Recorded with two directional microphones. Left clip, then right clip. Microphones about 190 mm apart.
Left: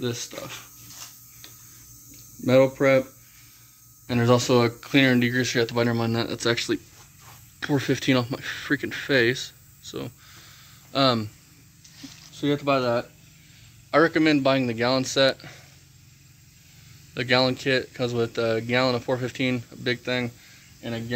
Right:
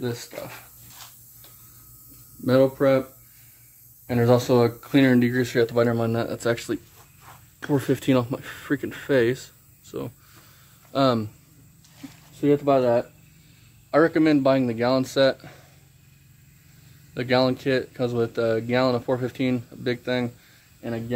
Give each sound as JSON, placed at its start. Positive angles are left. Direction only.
{"t": 0.0, "sound": "speech", "side_deg": -10}
{"t": 2.4, "sound": "speech", "side_deg": 20}
{"t": 4.1, "sound": "speech", "side_deg": -5}
{"t": 12.4, "sound": "speech", "side_deg": -10}
{"t": 17.1, "sound": "speech", "side_deg": 0}